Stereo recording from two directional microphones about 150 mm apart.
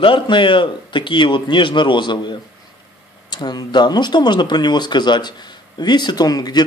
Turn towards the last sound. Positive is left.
turn(degrees=25)  # may be behind; listen again after turning